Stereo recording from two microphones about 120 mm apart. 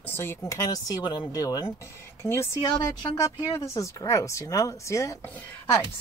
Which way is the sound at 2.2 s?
20° left (ahead or behind).